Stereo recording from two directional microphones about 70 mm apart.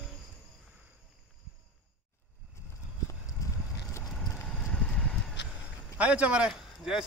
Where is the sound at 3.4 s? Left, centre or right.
Left.